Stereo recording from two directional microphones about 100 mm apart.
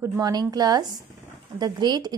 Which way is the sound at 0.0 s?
35° right (ahead or behind).